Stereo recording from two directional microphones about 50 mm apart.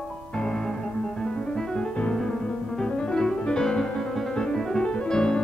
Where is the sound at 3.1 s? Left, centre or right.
Centre.